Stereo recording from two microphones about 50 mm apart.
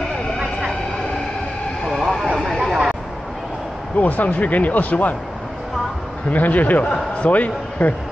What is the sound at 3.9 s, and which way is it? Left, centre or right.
Speech, left.